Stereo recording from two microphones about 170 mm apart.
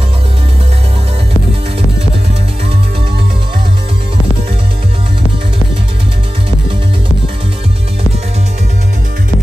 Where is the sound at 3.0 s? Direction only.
75° right (ahead or behind).